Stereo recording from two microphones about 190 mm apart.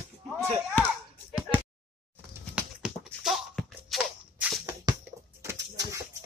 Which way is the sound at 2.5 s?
5° right (ahead or behind).